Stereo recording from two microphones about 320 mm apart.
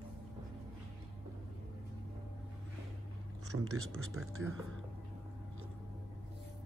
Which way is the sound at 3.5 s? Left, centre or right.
Right.